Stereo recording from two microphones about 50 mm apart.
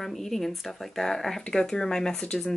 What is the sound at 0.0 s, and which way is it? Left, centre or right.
Speech, centre.